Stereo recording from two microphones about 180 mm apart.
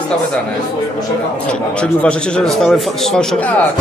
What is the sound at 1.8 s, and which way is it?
A man's voice, 5° left (ahead or behind).